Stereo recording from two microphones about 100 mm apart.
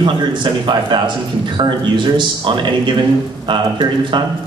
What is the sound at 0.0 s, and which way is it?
Speech, 50° right (ahead or behind).